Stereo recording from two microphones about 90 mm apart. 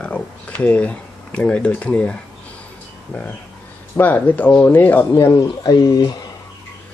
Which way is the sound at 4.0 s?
20° left (ahead or behind).